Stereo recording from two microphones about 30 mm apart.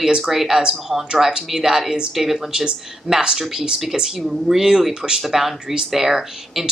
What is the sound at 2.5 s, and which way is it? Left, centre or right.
A woman's voice, right.